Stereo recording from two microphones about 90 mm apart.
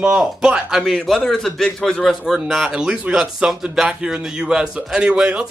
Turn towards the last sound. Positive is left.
turn(degrees=-10)  # may be behind; listen again after turning